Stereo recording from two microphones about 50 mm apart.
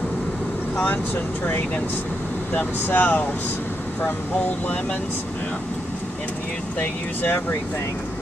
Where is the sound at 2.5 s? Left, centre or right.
Left.